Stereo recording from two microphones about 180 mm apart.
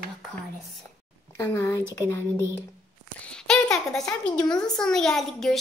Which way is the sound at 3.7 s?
5° left (ahead or behind).